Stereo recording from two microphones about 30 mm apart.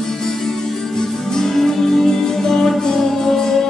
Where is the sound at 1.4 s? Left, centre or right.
Centre.